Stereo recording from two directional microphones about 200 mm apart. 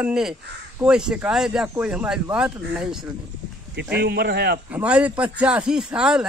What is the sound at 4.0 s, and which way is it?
Speech, 55° right (ahead or behind).